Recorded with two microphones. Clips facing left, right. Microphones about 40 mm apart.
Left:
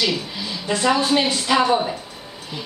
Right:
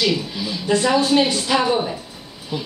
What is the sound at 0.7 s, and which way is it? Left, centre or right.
Speech, centre.